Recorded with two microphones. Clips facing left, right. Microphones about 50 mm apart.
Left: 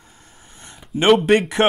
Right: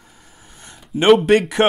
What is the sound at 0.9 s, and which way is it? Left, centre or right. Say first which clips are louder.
Speech: right 2 dB; centre.